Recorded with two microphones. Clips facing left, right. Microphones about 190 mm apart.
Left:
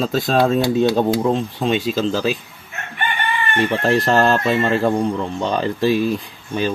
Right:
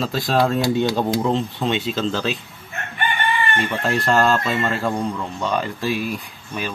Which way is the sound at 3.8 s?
20° left (ahead or behind).